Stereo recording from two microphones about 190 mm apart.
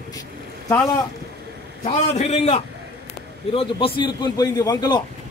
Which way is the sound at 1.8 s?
35° left (ahead or behind).